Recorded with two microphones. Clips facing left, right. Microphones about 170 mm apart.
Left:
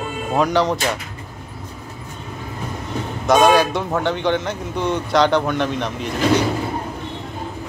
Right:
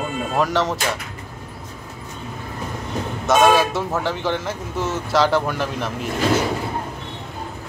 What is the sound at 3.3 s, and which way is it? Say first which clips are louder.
A man's voice: left 2 dB; centre (ahead or behind).